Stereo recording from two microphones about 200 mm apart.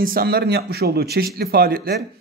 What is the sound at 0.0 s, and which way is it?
Speech, 50° right (ahead or behind).